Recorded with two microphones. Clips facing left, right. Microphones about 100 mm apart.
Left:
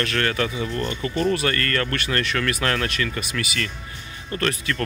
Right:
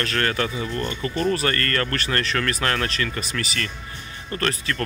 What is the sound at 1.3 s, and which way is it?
Speech, 35° right (ahead or behind).